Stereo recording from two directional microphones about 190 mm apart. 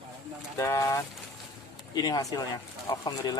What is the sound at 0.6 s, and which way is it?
Speech, 15° left (ahead or behind).